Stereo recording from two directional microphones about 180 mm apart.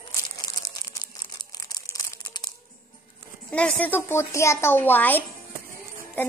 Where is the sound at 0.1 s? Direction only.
20° left (ahead or behind).